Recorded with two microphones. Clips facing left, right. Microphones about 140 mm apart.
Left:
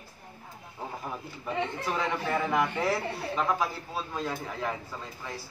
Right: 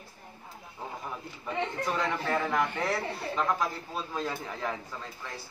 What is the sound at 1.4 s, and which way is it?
A man's voice, 5° left (ahead or behind).